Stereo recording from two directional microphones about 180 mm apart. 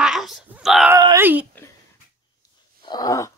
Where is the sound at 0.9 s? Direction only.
15° right (ahead or behind).